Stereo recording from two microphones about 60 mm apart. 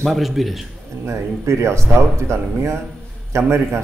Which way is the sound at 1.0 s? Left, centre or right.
Right.